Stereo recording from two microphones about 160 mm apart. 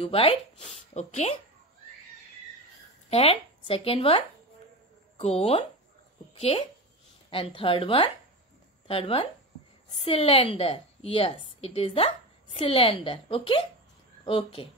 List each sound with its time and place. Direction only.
0.0 s speech: 35° left (ahead or behind)
3.1 s speech: 40° left (ahead or behind)
7.2 s a woman's voice: 35° left (ahead or behind)